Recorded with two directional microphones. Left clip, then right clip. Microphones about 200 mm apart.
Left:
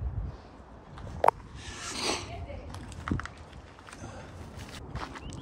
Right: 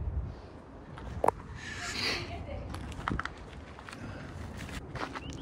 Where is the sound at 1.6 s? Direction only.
25° left (ahead or behind).